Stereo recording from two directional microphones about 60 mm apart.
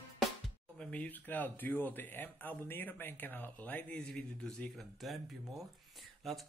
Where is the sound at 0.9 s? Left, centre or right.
Left.